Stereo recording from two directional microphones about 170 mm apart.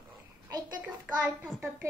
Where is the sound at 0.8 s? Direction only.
10° right (ahead or behind).